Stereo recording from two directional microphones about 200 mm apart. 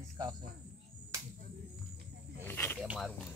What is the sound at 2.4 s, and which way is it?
Snake, 10° left (ahead or behind).